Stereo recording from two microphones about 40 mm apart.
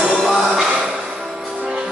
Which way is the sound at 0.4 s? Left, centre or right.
Centre.